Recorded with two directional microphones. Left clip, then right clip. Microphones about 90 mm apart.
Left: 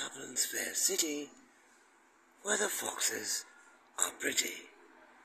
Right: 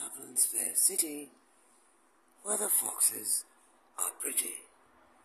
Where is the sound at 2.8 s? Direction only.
15° right (ahead or behind).